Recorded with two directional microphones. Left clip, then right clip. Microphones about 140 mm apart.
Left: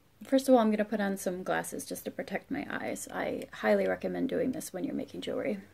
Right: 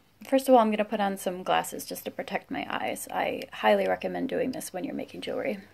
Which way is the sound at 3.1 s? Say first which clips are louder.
Right 6 dB; 40° right (ahead or behind).